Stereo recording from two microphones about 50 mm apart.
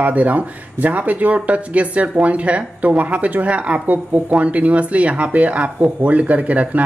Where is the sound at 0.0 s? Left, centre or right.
Right.